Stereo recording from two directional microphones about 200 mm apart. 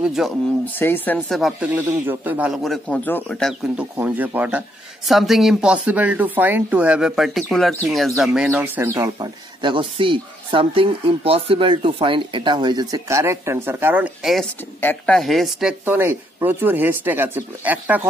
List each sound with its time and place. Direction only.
0.0 s speech: centre (ahead or behind)
0.7 s speech: 10° left (ahead or behind)
3.7 s a man's voice: 10° right (ahead or behind)
14.8 s a man's voice: 10° left (ahead or behind); by 18.0 s 10° right (ahead or behind)